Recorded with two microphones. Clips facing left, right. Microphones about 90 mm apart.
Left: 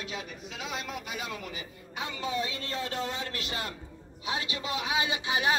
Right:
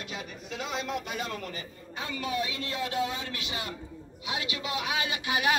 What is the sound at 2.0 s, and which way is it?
A man's voice, 25° left (ahead or behind).